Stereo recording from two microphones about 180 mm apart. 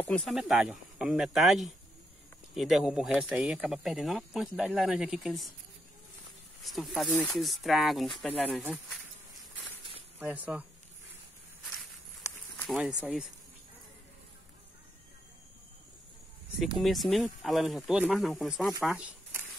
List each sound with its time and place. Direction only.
0.0 s speech: 5° left (ahead or behind)
6.6 s speech: centre (ahead or behind)
10.1 s speech: 10° right (ahead or behind)
12.7 s speech: 5° right (ahead or behind)
16.7 s speech: centre (ahead or behind)